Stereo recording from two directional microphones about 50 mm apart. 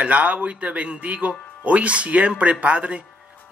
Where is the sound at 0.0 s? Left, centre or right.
Right.